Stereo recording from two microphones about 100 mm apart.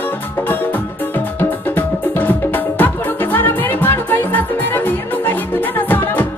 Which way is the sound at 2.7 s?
20° left (ahead or behind).